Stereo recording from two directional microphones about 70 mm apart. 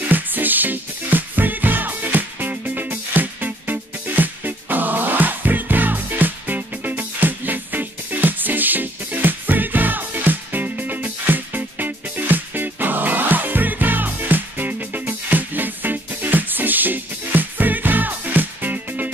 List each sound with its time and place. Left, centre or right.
0.1 s music: right